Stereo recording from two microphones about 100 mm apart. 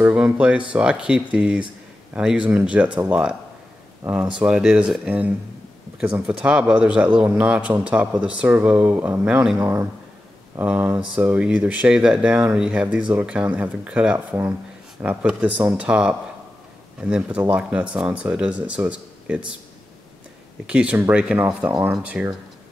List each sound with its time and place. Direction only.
0.0 s speech: 10° right (ahead or behind)
9.6 s speech: 25° right (ahead or behind)
15.2 s speech: 15° right (ahead or behind)
20.6 s speech: 10° right (ahead or behind)